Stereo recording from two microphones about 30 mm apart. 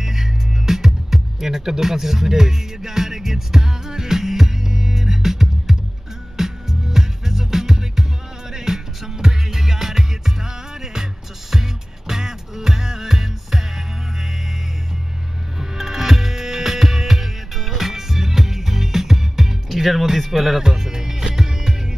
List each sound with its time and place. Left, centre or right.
0.0 s music: centre
12.1 s music: centre
15.6 s music: centre